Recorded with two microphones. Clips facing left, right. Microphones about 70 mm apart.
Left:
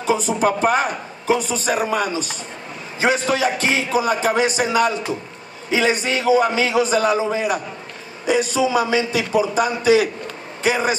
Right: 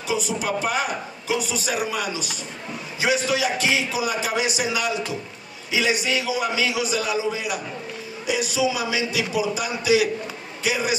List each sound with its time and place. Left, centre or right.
0.0 s a man's voice: left